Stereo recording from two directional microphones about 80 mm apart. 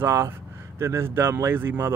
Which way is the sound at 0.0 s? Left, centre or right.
Right.